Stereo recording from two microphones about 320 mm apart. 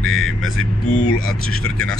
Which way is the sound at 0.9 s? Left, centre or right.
Left.